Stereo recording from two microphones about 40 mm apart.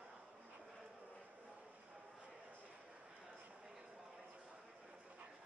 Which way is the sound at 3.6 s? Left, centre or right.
Centre.